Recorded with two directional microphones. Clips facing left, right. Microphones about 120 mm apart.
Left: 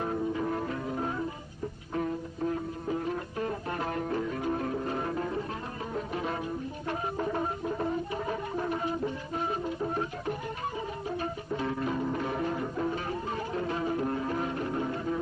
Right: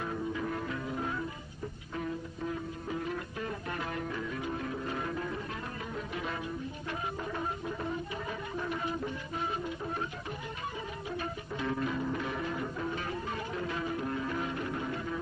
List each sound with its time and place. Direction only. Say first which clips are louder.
0.0 s music: left 4 dB; 40° left (ahead or behind)
3.3 s music: left 5 dB; 35° left (ahead or behind)
6.9 s music: left 6 dB; 40° left (ahead or behind)